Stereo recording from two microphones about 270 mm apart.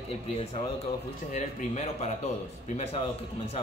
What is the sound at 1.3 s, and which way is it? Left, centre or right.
A man's voice, left.